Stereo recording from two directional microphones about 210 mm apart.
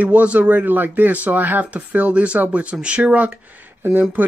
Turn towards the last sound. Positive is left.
turn(degrees=-10)  # may be behind; listen again after turning